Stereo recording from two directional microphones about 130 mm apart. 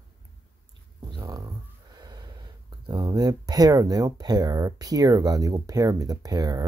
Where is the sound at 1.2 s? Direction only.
30° right (ahead or behind).